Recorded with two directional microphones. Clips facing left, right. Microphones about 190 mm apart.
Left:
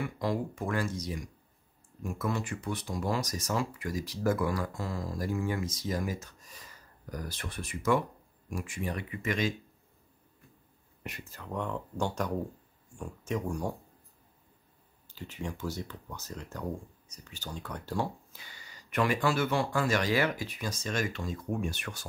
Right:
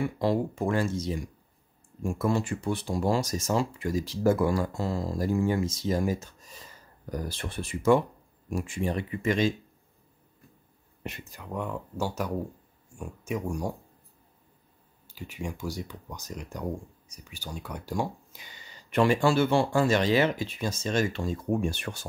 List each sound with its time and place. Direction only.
0.0 s speech: 25° right (ahead or behind)
11.0 s speech: 25° right (ahead or behind)
15.0 s speech: 10° right (ahead or behind); by 22.0 s 30° right (ahead or behind)